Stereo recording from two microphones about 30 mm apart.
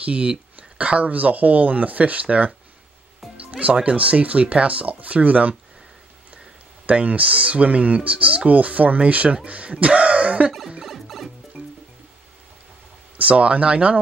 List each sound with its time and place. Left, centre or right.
0.0 s speech: right
0.6 s a sound: right
1.1 s speech: right
3.8 s speech: right
6.9 s speech: right
9.0 s speech: right
10.9 s music: centre
13.2 s speech: right